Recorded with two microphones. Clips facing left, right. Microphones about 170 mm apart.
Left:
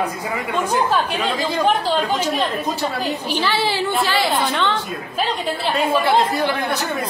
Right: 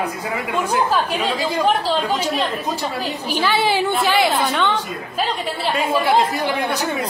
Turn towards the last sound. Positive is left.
turn(degrees=-10)  # may be behind; listen again after turning